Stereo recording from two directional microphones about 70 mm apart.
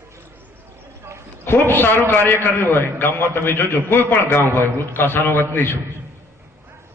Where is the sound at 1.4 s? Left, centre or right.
Left.